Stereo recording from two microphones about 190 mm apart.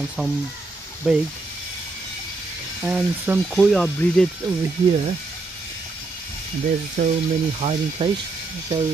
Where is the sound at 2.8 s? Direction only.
5° right (ahead or behind).